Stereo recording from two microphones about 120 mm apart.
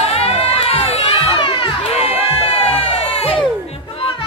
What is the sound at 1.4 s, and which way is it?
Crowd, 40° left (ahead or behind).